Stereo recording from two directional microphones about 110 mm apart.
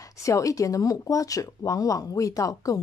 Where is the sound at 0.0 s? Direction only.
30° left (ahead or behind).